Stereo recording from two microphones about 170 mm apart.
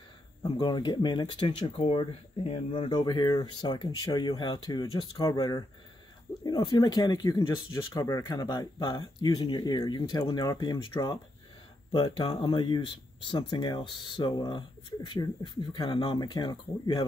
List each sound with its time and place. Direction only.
0.4 s speech: 25° left (ahead or behind)